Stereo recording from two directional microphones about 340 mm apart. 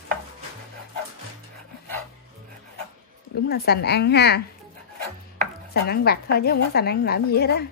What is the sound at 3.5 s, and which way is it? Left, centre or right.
Speech, left.